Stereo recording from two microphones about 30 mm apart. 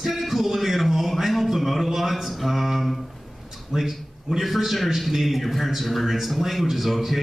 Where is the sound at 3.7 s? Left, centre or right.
Centre.